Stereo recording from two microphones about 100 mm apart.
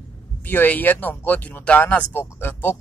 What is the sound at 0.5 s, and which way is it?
Speech, 20° left (ahead or behind).